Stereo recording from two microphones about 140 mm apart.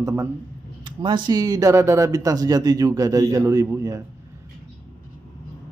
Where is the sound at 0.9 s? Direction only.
35° right (ahead or behind).